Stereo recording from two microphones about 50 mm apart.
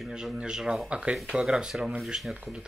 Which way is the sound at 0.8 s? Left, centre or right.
Right.